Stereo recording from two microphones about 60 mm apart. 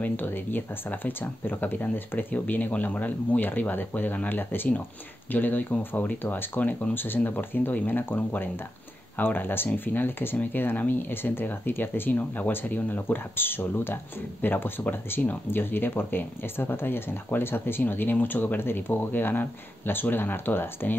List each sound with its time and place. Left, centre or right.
0.0 s speech: left